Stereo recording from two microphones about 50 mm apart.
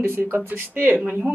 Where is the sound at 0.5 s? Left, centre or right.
Right.